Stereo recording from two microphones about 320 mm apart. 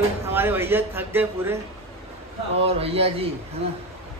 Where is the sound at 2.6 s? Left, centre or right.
Centre.